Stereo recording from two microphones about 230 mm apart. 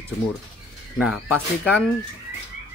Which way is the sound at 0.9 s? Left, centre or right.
Centre.